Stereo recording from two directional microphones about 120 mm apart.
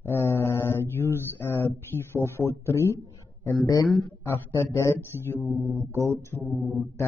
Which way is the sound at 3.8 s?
Centre (ahead or behind).